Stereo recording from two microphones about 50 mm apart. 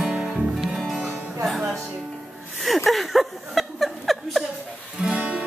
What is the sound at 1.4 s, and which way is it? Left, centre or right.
Music, centre.